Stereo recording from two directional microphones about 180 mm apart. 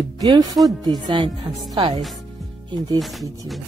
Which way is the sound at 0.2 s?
20° right (ahead or behind).